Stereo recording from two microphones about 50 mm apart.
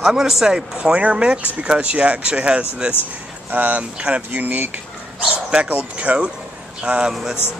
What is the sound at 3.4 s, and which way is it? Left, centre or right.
Speech, right.